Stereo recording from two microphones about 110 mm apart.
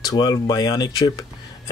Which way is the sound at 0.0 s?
40° left (ahead or behind).